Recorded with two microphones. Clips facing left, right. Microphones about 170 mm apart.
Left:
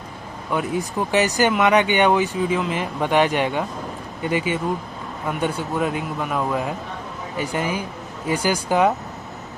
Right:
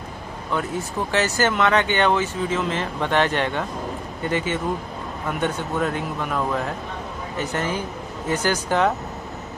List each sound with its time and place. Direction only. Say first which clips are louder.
0.5 s speech: left 3 dB; 15° left (ahead or behind)